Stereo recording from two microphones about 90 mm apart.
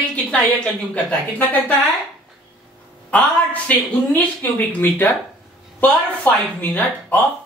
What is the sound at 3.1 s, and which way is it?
A woman's voice, 15° left (ahead or behind).